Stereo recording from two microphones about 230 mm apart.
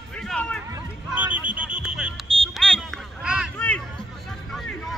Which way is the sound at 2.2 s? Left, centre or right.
Right.